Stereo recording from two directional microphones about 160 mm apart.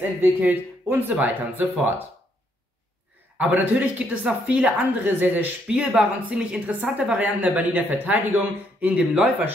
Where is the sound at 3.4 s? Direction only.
10° right (ahead or behind).